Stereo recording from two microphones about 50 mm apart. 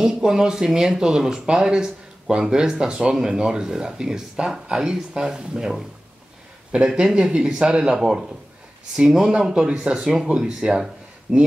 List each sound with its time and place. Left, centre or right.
0.0 s speech: centre
6.9 s speech: centre
9.5 s speech: centre